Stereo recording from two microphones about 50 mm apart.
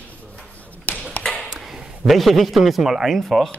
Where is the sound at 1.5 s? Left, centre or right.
Centre.